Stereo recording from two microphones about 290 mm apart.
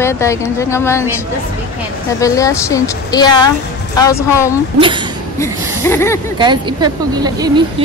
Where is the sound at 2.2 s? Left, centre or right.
Centre.